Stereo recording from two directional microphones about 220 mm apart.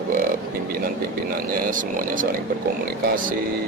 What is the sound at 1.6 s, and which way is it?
Speech, 35° right (ahead or behind).